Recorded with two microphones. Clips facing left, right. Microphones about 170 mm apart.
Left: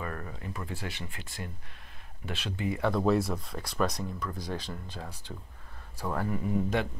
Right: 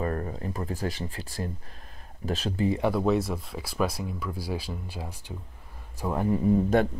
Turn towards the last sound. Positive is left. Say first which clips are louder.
# right 7 dB
turn(degrees=-30)  # may be behind; listen again after turning